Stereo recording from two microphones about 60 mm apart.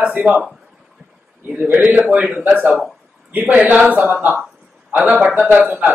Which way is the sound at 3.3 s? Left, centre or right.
Right.